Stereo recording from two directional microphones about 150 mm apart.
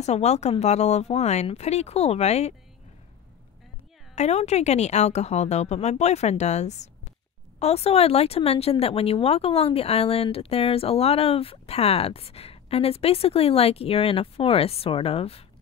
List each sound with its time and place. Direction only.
0.0 s a woman's voice: 45° left (ahead or behind)
4.1 s a woman's voice: 50° left (ahead or behind)